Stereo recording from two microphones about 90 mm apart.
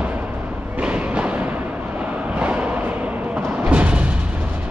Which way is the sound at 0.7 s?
15° right (ahead or behind).